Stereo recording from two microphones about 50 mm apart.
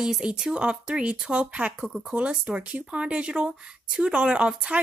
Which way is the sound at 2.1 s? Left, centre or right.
Right.